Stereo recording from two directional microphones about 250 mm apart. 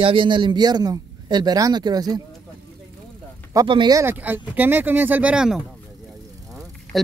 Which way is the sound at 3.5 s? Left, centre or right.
Centre.